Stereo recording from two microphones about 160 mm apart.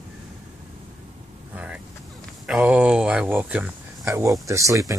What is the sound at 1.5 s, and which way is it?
Speech, 10° right (ahead or behind).